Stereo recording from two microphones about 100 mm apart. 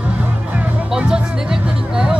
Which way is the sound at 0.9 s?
5° right (ahead or behind).